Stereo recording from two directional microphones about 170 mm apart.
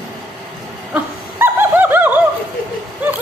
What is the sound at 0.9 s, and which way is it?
Laughter, 10° right (ahead or behind).